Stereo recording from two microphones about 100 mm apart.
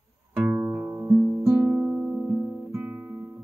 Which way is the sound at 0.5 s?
25° right (ahead or behind).